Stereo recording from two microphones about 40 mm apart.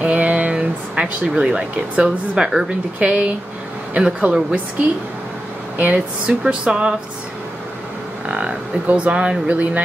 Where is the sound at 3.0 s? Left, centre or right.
Right.